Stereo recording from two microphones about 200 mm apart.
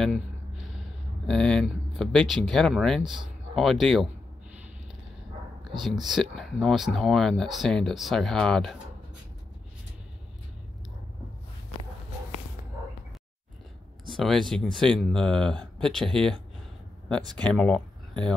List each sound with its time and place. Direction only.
1.2 s speech: 5° left (ahead or behind)
5.7 s speech: centre (ahead or behind)
14.1 s speech: centre (ahead or behind)
17.2 s speech: 20° right (ahead or behind)
17.5 s speech: 5° left (ahead or behind)